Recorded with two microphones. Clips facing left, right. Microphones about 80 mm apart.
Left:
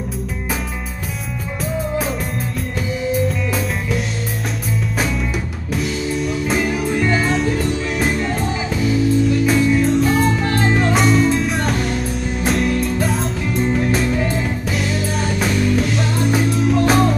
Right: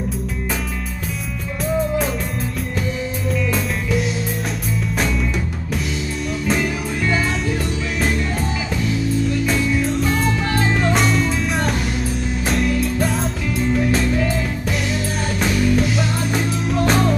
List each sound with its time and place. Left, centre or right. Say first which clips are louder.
6.4 s music: right 1 dB; centre
7.0 s music: left 1 dB; centre
8.0 s music: even; centre